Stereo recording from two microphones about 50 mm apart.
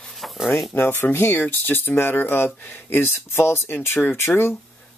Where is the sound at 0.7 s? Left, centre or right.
Left.